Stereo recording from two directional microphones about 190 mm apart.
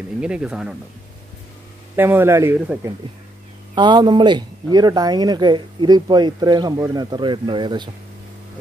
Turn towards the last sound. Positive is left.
turn(degrees=-25)  # may be behind; listen again after turning